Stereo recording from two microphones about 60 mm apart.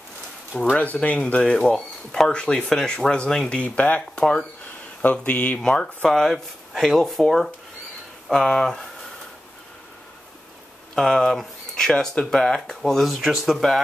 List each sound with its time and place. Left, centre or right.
0.7 s speech: left
3.5 s speech: left
5.6 s speech: centre
6.3 s speech: centre
8.3 s speech: centre
11.0 s speech: centre
13.1 s speech: centre